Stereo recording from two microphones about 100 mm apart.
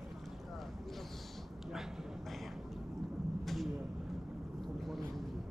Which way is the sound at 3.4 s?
Centre (ahead or behind).